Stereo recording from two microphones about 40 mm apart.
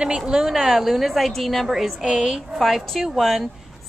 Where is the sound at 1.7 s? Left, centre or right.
Centre.